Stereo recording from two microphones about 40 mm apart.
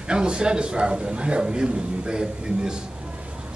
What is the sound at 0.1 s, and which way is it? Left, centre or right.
A man's voice, right.